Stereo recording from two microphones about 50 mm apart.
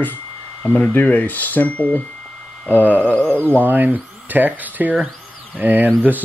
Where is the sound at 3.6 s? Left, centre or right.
Right.